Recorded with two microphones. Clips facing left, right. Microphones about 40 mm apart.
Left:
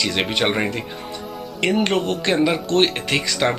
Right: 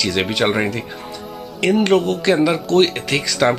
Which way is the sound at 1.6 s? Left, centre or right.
Centre.